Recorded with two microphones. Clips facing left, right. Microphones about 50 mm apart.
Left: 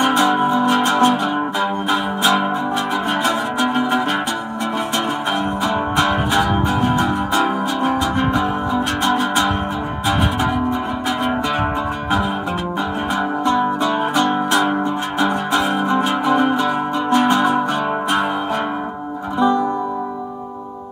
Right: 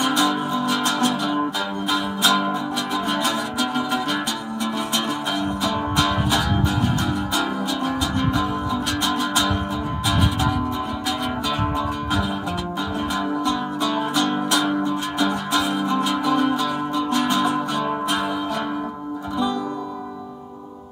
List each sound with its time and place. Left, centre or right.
0.0 s music: left
5.6 s music: left
13.5 s music: left
19.3 s music: left